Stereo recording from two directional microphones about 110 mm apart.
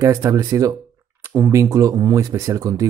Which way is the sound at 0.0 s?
30° right (ahead or behind).